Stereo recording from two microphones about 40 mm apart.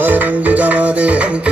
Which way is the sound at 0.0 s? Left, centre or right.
Right.